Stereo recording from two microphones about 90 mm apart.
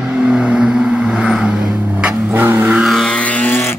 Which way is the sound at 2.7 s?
Centre (ahead or behind).